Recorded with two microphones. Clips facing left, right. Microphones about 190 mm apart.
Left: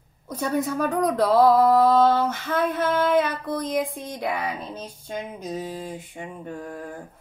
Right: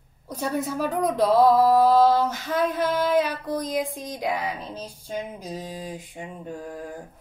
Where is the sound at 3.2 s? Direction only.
10° right (ahead or behind).